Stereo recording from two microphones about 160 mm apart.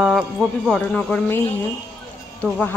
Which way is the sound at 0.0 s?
Centre (ahead or behind).